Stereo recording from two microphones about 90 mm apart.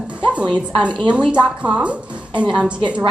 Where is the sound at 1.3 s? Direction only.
15° right (ahead or behind).